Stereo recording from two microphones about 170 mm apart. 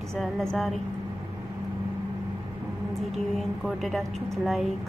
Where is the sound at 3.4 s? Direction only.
Centre (ahead or behind).